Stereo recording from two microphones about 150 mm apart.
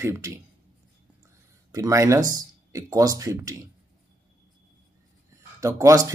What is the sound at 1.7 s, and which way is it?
Speech, 20° right (ahead or behind).